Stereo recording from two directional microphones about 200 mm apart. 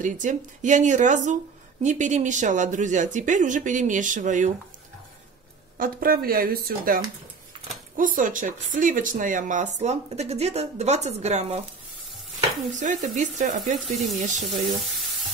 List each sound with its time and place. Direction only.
0.0 s speech: 40° right (ahead or behind)
5.8 s speech: 45° right (ahead or behind)
8.0 s speech: 40° right (ahead or behind)
12.7 s speech: 40° right (ahead or behind)